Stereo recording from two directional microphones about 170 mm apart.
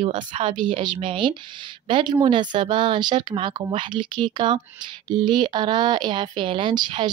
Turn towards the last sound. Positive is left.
turn(degrees=-25)  # may be behind; listen again after turning